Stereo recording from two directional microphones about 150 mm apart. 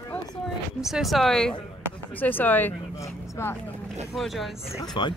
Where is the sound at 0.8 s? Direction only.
Centre (ahead or behind); by 3.5 s 20° left (ahead or behind).